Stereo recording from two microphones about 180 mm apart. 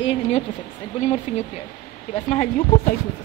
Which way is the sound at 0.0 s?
35° left (ahead or behind).